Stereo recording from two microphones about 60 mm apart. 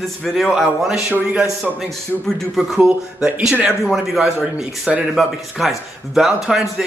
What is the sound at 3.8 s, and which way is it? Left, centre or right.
A man's voice, centre.